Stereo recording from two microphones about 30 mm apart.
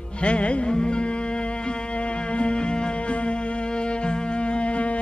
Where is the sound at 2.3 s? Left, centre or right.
Left.